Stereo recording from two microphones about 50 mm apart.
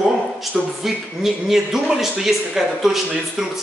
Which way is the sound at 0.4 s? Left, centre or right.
Centre.